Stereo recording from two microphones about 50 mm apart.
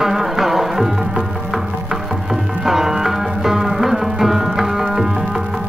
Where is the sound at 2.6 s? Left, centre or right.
Centre.